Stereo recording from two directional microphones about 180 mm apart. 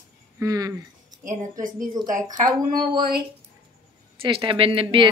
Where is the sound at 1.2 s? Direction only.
45° right (ahead or behind).